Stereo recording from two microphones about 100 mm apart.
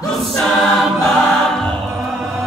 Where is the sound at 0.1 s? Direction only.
5° left (ahead or behind).